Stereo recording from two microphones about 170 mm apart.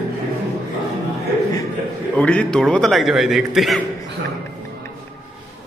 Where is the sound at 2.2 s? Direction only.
5° left (ahead or behind).